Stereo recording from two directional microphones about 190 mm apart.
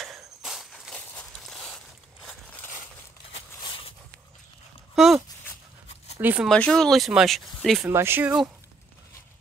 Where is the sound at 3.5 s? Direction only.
25° left (ahead or behind).